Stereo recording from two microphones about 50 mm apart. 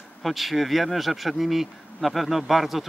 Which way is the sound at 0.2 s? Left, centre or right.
Centre.